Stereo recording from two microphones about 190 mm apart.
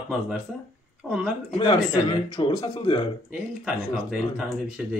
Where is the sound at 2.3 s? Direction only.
25° left (ahead or behind).